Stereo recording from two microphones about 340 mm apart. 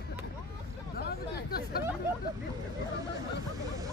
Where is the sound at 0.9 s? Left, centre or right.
Left.